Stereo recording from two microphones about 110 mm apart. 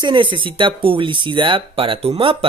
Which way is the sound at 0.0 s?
45° right (ahead or behind).